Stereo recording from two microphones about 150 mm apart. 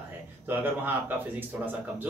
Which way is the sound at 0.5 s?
15° right (ahead or behind).